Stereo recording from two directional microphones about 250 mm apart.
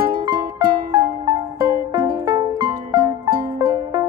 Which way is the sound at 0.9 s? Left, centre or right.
Centre.